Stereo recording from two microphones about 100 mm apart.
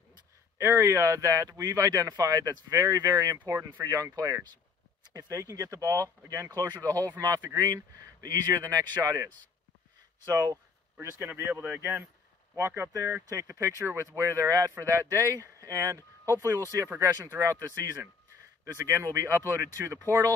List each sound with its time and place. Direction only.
0.6 s speech: 25° right (ahead or behind)
10.3 s speech: 40° right (ahead or behind)
11.0 s speech: 25° right (ahead or behind)
18.8 s speech: 30° right (ahead or behind)